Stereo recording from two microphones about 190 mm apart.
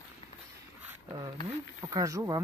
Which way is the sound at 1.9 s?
15° right (ahead or behind).